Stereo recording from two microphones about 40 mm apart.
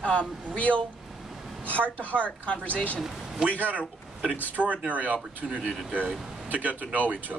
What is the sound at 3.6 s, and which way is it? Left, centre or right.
Speech, right.